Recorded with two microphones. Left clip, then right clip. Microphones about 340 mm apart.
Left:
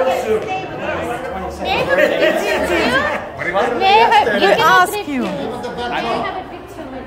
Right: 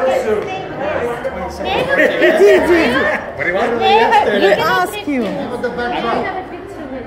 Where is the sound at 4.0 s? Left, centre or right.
Centre.